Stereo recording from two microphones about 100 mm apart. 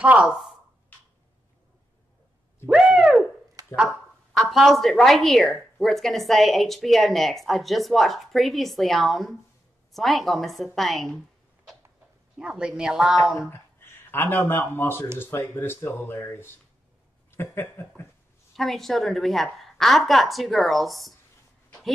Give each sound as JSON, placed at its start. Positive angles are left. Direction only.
{"t": 0.0, "sound": "speech", "side_deg": -10}
{"t": 2.6, "sound": "owl", "side_deg": -10}
{"t": 3.6, "sound": "a sound", "side_deg": -40}
{"t": 4.3, "sound": "speech", "side_deg": 0}
{"t": 12.4, "sound": "a woman's voice", "side_deg": -10}
{"t": 13.5, "sound": "speech", "side_deg": 20}
{"t": 18.6, "sound": "speech", "side_deg": 0}